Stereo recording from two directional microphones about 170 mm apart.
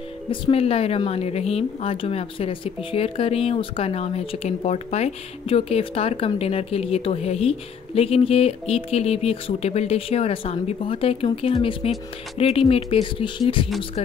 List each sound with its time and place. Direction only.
0.3 s speech: 35° left (ahead or behind)